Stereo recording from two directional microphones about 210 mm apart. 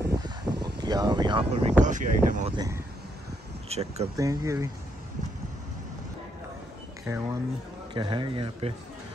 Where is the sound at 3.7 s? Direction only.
30° right (ahead or behind).